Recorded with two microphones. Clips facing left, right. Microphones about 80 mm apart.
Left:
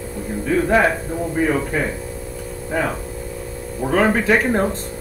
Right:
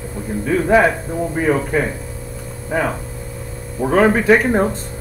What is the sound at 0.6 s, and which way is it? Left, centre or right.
Speech, centre.